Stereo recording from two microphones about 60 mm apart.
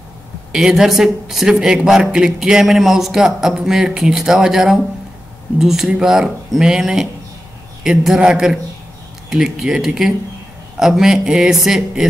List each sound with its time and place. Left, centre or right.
0.5 s a man's voice: centre